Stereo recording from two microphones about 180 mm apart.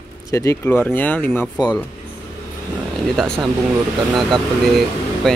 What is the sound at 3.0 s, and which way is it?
Speech, centre (ahead or behind).